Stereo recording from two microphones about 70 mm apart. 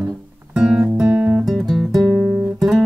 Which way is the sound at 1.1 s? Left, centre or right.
Centre.